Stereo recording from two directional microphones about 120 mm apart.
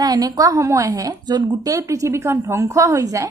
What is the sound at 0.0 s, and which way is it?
A woman's voice, 30° right (ahead or behind).